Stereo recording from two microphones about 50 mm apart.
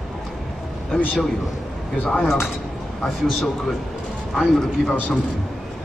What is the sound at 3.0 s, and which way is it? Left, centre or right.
Speech, centre.